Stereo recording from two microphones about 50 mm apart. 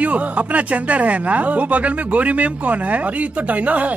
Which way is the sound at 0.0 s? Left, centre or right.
Right.